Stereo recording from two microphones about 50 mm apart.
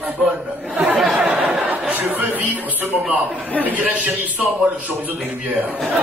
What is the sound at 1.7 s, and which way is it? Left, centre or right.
Speech, right.